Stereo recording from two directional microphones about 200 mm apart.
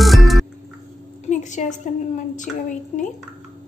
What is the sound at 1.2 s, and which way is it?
A woman's voice, 35° left (ahead or behind).